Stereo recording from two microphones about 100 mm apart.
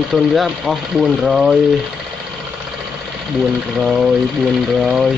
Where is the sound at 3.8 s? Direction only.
5° right (ahead or behind).